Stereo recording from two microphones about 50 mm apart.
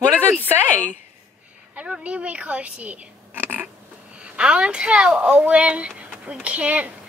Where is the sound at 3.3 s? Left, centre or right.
Right.